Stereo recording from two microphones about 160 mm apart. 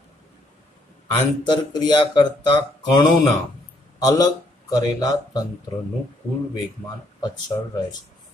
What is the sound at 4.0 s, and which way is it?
Speech, 25° left (ahead or behind).